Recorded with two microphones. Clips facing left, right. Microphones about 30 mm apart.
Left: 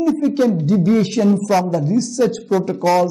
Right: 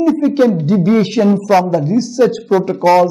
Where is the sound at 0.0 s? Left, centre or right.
Right.